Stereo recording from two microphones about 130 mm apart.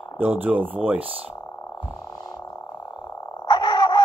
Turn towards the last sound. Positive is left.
turn(degrees=35)  # may be behind; listen again after turning